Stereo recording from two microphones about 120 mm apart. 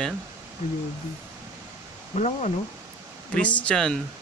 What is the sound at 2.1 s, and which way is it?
Speech, 75° left (ahead or behind).